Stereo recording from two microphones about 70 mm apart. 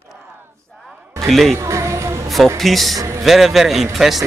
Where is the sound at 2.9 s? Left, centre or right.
Right.